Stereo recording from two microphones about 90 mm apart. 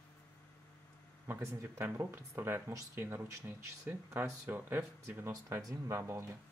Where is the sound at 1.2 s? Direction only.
30° right (ahead or behind).